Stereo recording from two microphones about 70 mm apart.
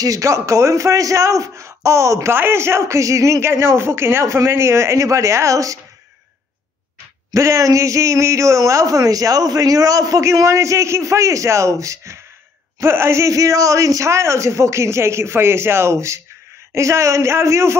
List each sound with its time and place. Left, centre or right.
0.0 s a man's voice: right
7.3 s a man's voice: right